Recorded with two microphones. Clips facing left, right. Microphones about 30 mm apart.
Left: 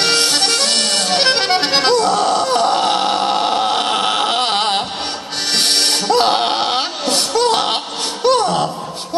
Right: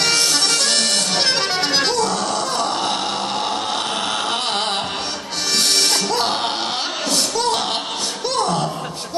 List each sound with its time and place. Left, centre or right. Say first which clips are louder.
0.0 s accordion: left 3 dB; left
5.6 s music: left 2 dB; left
8.4 s laughter: left 3 dB; left